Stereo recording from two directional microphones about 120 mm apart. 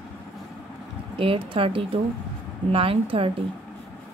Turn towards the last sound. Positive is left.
turn(degrees=-50)  # may be behind; listen again after turning